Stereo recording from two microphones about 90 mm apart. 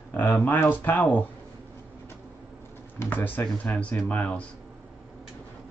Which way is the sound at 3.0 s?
20° left (ahead or behind).